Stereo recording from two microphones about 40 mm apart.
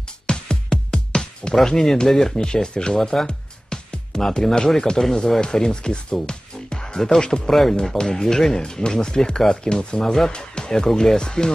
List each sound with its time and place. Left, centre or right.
0.3 s music: left
1.5 s speech: centre
3.0 s speech: centre
3.3 s music: left
4.3 s speech: centre
6.2 s music: centre
7.2 s speech: left
7.4 s speech: centre
10.9 s speech: centre
11.1 s speech: centre